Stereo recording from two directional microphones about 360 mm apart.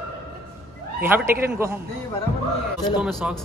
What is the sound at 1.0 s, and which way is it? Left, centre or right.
Speech, centre.